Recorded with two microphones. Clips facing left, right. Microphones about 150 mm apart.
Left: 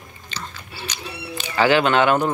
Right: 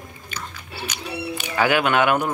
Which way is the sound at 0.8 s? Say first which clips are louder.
Right 4 dB; 10° right (ahead or behind).